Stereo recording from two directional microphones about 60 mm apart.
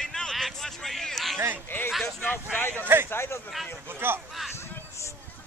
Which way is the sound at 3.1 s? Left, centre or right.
Left.